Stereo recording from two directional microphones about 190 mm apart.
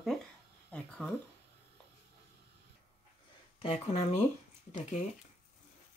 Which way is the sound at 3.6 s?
30° left (ahead or behind).